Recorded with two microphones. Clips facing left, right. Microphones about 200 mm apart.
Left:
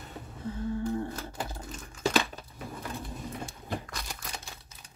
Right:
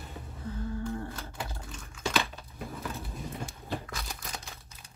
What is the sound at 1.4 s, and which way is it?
Typing, 35° left (ahead or behind).